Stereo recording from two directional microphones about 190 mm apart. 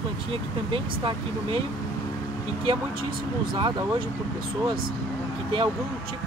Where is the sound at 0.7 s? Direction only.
25° right (ahead or behind).